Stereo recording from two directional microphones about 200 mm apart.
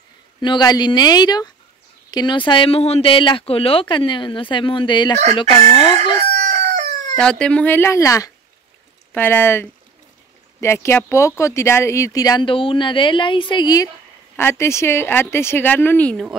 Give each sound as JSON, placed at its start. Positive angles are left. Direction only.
{"t": 0.4, "sound": "speech", "side_deg": 20}
{"t": 6.3, "sound": "chicken", "side_deg": -35}
{"t": 7.2, "sound": "speech", "side_deg": 5}